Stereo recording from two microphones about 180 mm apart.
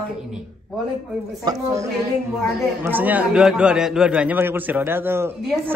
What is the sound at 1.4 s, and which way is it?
A man's voice, 20° right (ahead or behind).